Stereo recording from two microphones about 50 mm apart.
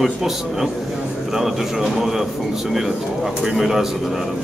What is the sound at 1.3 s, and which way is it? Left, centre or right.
Speech, centre.